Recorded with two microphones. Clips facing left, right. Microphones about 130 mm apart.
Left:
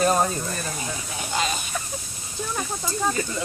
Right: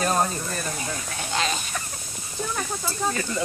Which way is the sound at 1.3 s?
5° left (ahead or behind).